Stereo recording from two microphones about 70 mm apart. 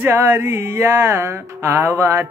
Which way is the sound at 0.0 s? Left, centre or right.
Right.